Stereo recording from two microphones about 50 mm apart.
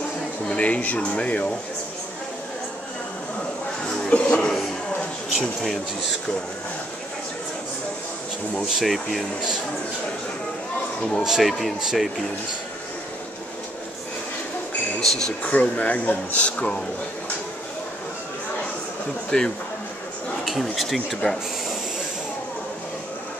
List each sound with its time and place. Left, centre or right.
0.5 s speech: left
3.8 s a sound: left
5.4 s speech: centre
8.6 s speech: centre
11.2 s speech: centre
15.0 s speech: centre
15.6 s speech: left
19.3 s speech: centre
20.4 s speech: centre